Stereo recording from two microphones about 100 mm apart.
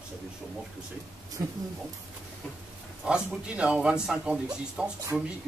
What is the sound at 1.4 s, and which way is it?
Speech, 35° right (ahead or behind).